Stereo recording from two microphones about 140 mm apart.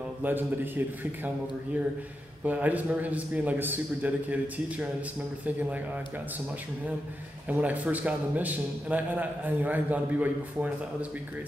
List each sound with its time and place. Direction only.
0.2 s a man's voice: 15° right (ahead or behind)
2.4 s a man's voice: 10° right (ahead or behind)
7.4 s a man's voice: 10° right (ahead or behind)